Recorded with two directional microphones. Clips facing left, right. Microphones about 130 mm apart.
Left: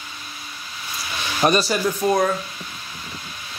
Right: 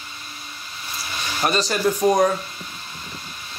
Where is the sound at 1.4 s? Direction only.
15° left (ahead or behind).